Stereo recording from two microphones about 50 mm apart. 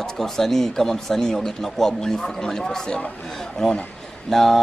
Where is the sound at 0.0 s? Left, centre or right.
Centre.